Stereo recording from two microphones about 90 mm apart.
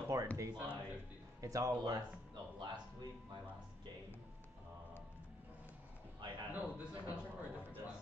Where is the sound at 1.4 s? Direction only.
40° right (ahead or behind).